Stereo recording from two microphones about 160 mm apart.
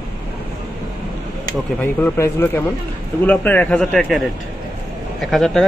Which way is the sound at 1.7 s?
15° left (ahead or behind).